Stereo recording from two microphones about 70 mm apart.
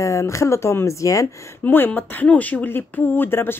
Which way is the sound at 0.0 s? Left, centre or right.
Left.